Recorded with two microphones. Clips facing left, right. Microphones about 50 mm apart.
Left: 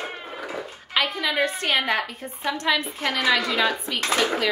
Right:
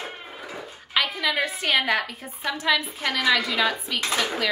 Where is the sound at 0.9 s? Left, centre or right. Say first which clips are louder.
Even; centre.